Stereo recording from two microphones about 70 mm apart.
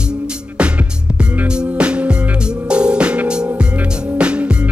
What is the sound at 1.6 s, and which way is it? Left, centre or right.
Music, centre.